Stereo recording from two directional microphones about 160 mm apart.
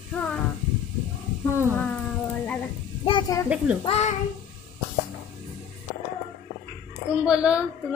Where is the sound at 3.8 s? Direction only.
40° left (ahead or behind).